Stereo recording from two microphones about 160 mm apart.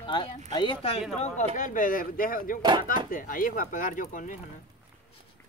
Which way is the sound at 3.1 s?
60° left (ahead or behind).